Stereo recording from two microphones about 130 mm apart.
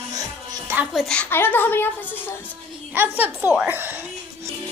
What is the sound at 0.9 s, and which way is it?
Speech, centre (ahead or behind).